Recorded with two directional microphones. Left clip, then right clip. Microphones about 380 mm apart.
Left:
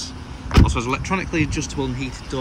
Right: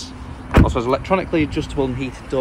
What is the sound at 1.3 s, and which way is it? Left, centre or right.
Speech, right.